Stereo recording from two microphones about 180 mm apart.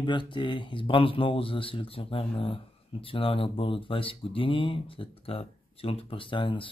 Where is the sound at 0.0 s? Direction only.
25° left (ahead or behind).